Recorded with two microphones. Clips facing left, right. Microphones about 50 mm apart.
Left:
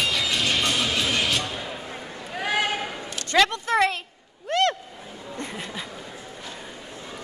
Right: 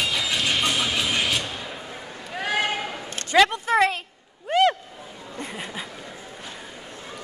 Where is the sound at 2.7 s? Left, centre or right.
Centre.